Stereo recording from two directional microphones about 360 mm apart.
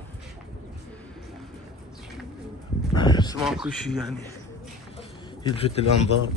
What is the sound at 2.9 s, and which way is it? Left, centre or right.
Speech, centre.